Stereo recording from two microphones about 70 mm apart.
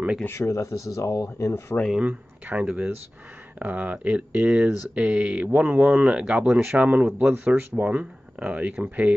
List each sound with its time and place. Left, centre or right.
0.3 s speech: left
2.0 s speech: centre
2.6 s speech: centre
3.5 s speech: right
4.5 s speech: centre
5.2 s speech: centre